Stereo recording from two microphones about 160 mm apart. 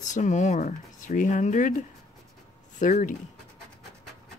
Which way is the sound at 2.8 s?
55° left (ahead or behind).